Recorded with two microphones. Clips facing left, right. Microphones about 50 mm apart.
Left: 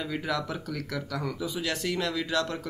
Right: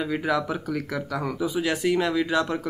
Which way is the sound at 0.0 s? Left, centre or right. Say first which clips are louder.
Right 6 dB; centre.